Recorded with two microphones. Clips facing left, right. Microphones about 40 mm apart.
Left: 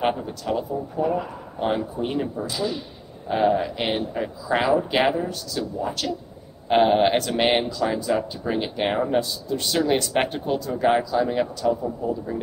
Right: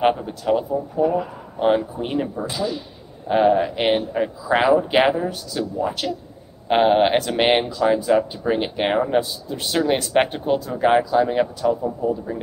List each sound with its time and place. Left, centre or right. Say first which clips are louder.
0.0 s speech: right 5 dB; centre
1.6 s speech: right 5 dB; centre